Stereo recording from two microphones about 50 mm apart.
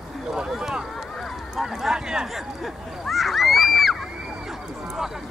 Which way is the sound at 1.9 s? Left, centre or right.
Centre.